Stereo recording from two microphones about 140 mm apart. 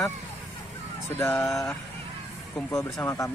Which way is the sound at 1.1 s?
20° left (ahead or behind).